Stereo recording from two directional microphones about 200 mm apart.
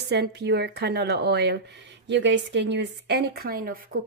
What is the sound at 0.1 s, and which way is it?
A woman's voice, 55° right (ahead or behind).